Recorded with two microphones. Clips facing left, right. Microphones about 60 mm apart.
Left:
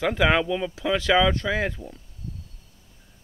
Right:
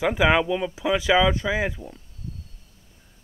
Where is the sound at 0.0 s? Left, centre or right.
Centre.